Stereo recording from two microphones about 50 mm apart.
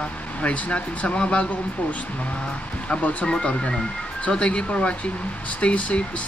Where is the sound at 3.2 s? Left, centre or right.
Centre.